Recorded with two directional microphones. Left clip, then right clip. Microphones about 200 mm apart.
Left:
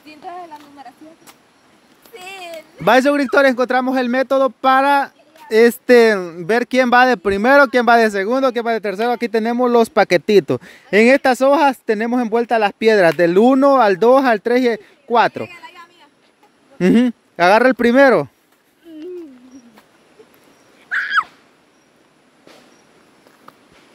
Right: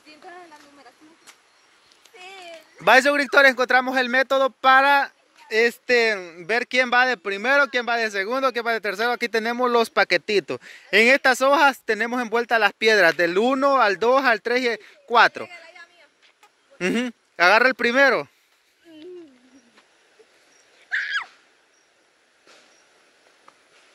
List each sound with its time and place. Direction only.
2.8 s a man's voice: 5° left (ahead or behind)
5.5 s speech: 30° left (ahead or behind)
8.2 s a man's voice: 10° left (ahead or behind)
16.7 s speech: 15° left (ahead or behind)